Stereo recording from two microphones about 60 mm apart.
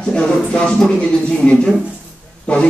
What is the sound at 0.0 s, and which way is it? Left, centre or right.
Music, centre.